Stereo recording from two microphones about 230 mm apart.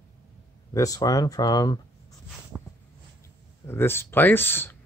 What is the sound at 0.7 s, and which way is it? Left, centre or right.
Speech, centre.